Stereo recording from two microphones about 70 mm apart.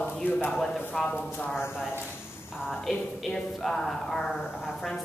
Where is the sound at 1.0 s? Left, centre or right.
Centre.